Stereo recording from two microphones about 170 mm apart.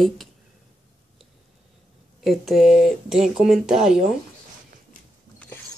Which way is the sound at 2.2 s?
Centre (ahead or behind).